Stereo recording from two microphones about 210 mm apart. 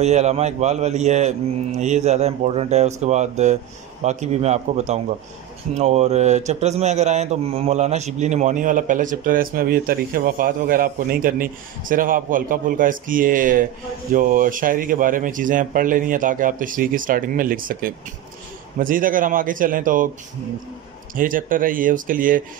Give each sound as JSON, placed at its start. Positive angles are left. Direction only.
{"t": 0.0, "sound": "speech", "side_deg": -30}
{"t": 21.1, "sound": "speech", "side_deg": -40}